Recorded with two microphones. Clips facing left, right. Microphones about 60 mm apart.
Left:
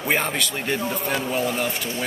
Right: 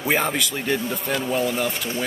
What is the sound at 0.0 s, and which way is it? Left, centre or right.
Speech, centre.